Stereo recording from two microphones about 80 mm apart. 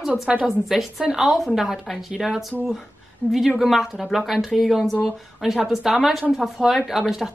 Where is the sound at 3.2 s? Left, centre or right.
Centre.